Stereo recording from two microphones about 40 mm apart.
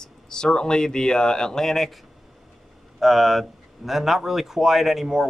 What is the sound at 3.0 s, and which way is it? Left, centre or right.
Speech, centre.